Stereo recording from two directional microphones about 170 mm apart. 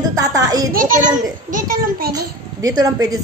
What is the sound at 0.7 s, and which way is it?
A child's voice, 55° right (ahead or behind).